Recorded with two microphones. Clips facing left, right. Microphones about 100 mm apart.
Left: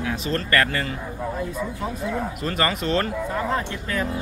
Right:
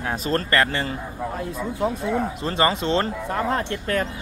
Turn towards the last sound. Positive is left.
turn(degrees=-50)  # may be behind; listen again after turning